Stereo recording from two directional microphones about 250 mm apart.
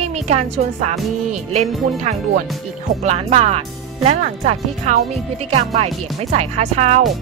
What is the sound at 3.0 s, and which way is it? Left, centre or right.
Speech, right.